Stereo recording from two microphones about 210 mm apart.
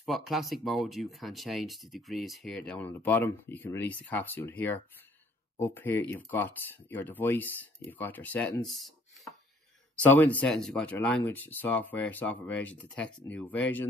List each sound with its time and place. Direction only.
0.0 s speech: centre (ahead or behind)